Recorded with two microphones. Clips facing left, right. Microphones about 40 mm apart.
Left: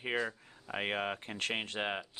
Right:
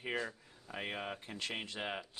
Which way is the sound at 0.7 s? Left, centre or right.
Left.